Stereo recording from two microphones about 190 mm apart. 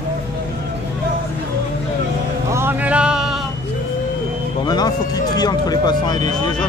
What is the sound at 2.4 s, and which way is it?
Speech, 10° right (ahead or behind).